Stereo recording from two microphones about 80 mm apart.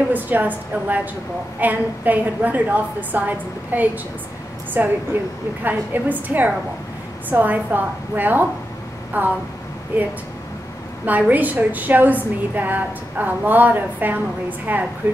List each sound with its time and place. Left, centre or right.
0.1 s a woman's voice: right